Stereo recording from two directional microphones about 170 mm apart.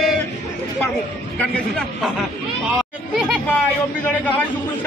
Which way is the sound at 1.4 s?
5° left (ahead or behind).